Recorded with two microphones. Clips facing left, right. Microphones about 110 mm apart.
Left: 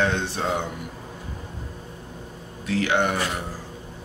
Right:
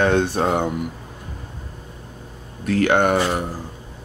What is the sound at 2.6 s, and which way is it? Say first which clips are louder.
Speech: right 5 dB; 50° right (ahead or behind).